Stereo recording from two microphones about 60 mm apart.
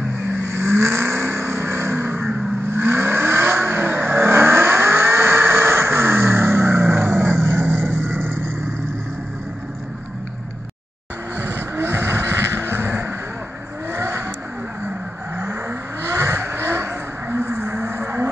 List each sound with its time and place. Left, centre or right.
0.4 s vehicle: right
11.3 s vehicle: right
16.0 s vehicle: right